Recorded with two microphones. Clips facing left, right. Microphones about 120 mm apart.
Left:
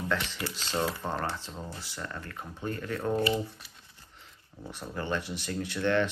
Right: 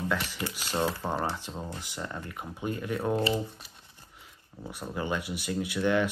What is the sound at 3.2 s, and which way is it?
Speech, 25° right (ahead or behind).